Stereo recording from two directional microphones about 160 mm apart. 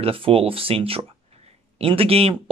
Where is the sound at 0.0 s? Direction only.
35° right (ahead or behind).